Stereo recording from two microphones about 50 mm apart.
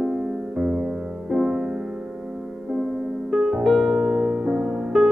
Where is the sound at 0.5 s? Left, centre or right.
Right.